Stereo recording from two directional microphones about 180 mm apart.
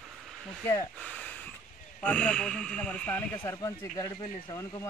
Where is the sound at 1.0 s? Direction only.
5° left (ahead or behind).